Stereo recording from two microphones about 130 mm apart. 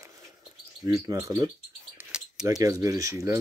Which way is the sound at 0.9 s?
25° right (ahead or behind).